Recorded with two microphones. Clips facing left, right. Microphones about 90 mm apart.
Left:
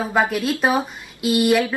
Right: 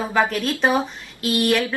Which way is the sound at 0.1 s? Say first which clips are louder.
Left 1 dB; 10° left (ahead or behind).